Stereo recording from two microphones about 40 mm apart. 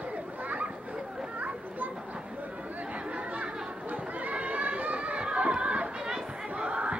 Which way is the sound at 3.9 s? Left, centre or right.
Right.